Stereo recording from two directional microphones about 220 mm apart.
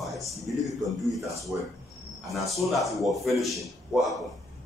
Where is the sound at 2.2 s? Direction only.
Centre (ahead or behind).